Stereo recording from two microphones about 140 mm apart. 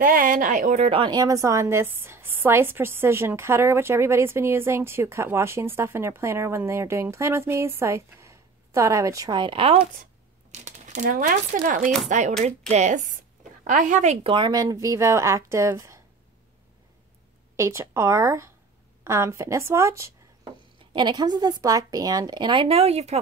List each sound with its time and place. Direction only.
0.0 s a woman's voice: 85° right; by 9.8 s 40° right (ahead or behind)
10.5 s speech: 55° right (ahead or behind)
12.1 s speech: 60° right (ahead or behind)
14.2 s a woman's voice: 35° right (ahead or behind)
17.6 s a woman's voice: 20° right (ahead or behind)
20.9 s a woman's voice: 30° right (ahead or behind); by 23.2 s 50° right (ahead or behind)